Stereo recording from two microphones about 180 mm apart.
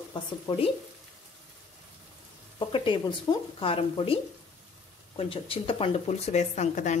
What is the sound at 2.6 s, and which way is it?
Speech, 25° left (ahead or behind).